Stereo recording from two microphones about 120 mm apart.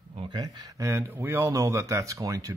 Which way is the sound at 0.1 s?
40° right (ahead or behind).